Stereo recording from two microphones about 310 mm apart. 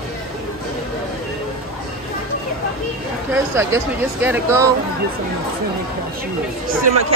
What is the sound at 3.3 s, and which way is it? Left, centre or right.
Speech, centre.